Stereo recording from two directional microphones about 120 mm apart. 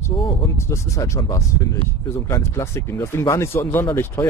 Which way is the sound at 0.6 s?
25° left (ahead or behind).